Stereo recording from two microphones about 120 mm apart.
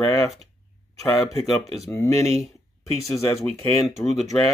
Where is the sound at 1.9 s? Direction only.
25° left (ahead or behind).